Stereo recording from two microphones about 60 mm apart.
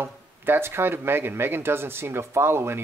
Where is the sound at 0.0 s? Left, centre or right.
Right.